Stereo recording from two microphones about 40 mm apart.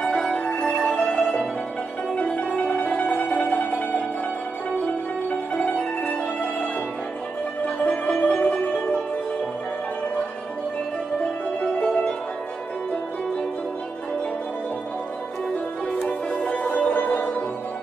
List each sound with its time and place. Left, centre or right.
0.1 s music: centre
4.8 s music: left
11.1 s music: left
16.1 s music: left
16.5 s music: left
16.9 s music: left